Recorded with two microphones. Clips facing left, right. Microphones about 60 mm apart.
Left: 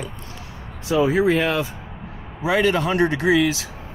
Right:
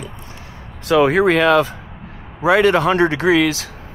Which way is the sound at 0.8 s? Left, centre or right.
Right.